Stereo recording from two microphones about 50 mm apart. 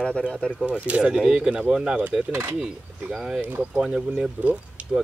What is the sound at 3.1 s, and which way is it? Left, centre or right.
Speech, centre.